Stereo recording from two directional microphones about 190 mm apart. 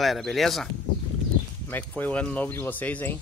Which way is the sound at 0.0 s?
Centre (ahead or behind).